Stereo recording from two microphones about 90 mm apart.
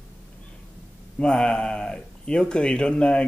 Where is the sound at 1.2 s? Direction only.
10° left (ahead or behind).